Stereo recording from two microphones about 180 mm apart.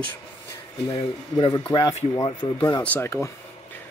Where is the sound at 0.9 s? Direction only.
25° left (ahead or behind).